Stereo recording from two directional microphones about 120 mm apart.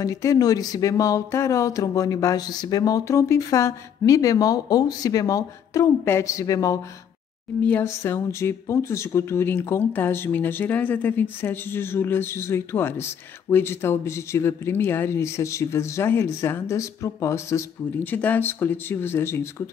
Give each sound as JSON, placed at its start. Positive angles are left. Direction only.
{"t": 0.0, "sound": "speech", "side_deg": 30}